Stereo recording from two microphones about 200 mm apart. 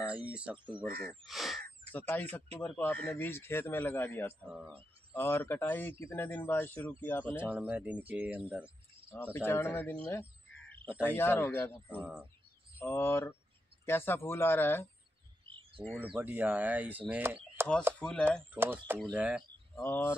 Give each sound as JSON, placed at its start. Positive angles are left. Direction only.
{"t": 0.2, "sound": "speech", "side_deg": -5}
{"t": 0.8, "sound": "speech", "side_deg": -50}
{"t": 1.2, "sound": "sneeze", "side_deg": 0}
{"t": 1.9, "sound": "a man's voice", "side_deg": 10}
{"t": 7.4, "sound": "speech", "side_deg": -5}
{"t": 9.1, "sound": "a man's voice", "side_deg": 10}
{"t": 15.8, "sound": "speech", "side_deg": -15}
{"t": 17.6, "sound": "chop", "side_deg": -10}
{"t": 17.9, "sound": "speech", "side_deg": 5}
{"t": 18.5, "sound": "speech", "side_deg": -10}
{"t": 19.7, "sound": "speech", "side_deg": 10}